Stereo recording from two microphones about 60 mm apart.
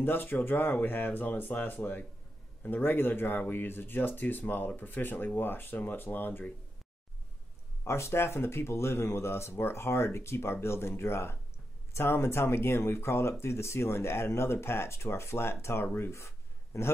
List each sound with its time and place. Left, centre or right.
0.0 s speech: left
7.8 s speech: left